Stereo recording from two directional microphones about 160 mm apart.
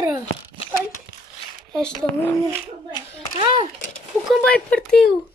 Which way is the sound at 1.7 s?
5° left (ahead or behind).